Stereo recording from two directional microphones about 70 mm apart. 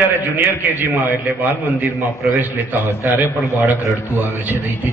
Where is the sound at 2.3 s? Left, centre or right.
Right.